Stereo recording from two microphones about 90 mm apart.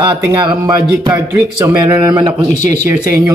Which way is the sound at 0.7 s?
45° right (ahead or behind).